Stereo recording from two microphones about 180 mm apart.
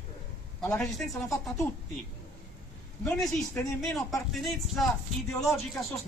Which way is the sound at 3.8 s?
Centre (ahead or behind).